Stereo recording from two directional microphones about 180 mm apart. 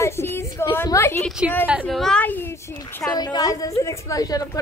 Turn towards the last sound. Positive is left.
turn(degrees=20)  # may be behind; listen again after turning